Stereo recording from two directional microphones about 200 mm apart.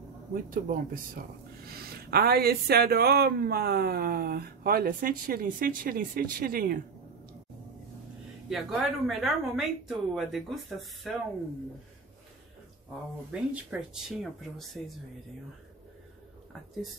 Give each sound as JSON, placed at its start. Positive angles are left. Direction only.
{"t": 0.3, "sound": "speech", "side_deg": -45}
{"t": 8.5, "sound": "a woman's voice", "side_deg": 0}
{"t": 13.3, "sound": "a woman's voice", "side_deg": -5}